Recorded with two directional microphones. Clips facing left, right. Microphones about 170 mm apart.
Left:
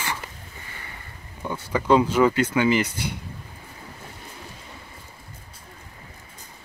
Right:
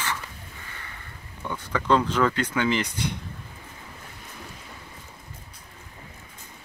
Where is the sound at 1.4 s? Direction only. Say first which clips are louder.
Left 3 dB; 10° left (ahead or behind).